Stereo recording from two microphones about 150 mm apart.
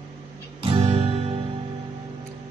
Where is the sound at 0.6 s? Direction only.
40° right (ahead or behind).